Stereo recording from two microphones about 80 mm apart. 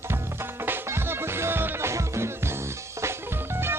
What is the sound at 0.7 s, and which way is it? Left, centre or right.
Music, right.